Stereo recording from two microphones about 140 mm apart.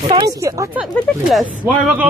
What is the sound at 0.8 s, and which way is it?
Speech, centre (ahead or behind).